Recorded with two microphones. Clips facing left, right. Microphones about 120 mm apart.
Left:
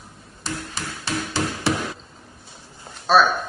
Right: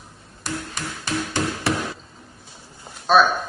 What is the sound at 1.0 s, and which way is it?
Music, 30° left (ahead or behind).